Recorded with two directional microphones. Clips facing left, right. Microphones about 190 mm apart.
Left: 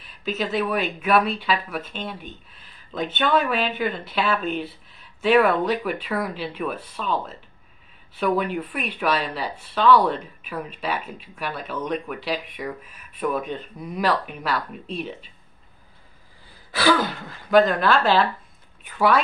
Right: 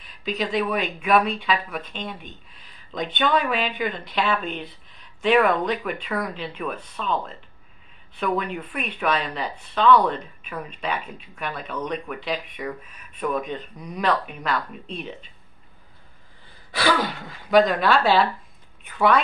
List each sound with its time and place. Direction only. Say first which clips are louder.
0.0 s speech: even; 5° left (ahead or behind)
16.7 s speech: left 2 dB; centre (ahead or behind)